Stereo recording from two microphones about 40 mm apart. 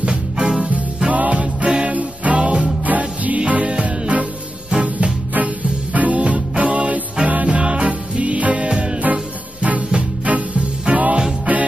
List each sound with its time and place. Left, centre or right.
0.0 s music: right
2.9 s music: right
5.9 s music: right
8.6 s music: right
9.0 s music: right